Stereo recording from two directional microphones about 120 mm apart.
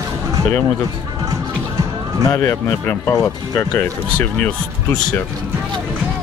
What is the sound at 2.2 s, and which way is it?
Speech, 25° left (ahead or behind).